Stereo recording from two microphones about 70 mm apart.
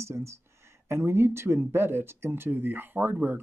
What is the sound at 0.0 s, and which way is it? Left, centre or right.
Speech, right.